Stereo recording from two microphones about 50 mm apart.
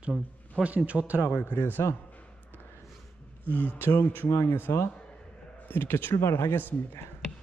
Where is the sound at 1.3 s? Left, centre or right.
Left.